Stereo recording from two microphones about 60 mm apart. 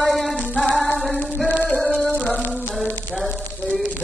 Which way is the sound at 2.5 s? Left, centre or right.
Centre.